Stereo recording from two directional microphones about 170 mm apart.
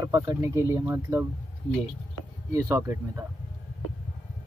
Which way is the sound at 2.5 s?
15° right (ahead or behind).